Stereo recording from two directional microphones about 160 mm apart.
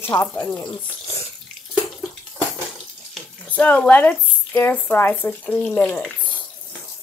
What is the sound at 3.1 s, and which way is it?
Speech, 10° left (ahead or behind).